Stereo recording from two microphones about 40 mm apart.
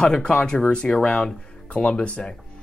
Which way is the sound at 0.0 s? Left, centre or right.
Left.